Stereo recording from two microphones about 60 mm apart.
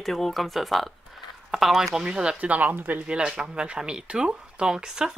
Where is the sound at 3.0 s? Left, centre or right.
Centre.